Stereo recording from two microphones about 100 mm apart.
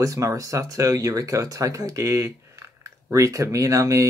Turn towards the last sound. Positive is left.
turn(degrees=-30)  # may be behind; listen again after turning